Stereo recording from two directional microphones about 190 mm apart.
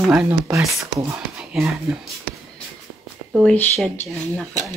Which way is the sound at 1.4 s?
5° right (ahead or behind).